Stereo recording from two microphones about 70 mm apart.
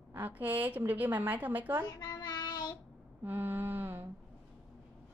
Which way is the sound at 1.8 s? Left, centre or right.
Left.